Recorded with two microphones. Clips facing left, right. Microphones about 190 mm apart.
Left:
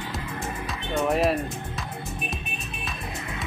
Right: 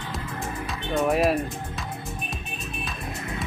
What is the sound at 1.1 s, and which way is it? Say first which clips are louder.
Speech: right 1 dB; 5° right (ahead or behind).